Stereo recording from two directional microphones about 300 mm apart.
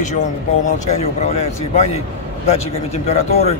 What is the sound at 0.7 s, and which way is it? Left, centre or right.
A man's voice, left.